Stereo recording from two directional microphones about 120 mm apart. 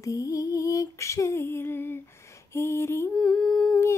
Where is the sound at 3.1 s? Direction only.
5° left (ahead or behind).